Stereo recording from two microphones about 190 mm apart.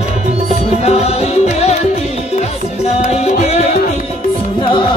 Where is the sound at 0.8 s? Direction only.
35° left (ahead or behind).